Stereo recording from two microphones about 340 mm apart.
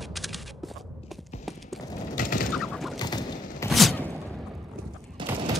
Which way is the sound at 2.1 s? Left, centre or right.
Left.